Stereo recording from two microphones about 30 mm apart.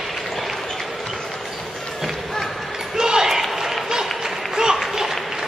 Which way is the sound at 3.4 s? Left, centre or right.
Centre.